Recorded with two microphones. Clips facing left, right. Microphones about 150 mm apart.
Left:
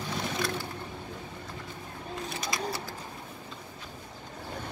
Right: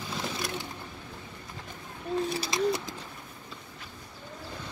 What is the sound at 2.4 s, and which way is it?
Bird, 20° right (ahead or behind).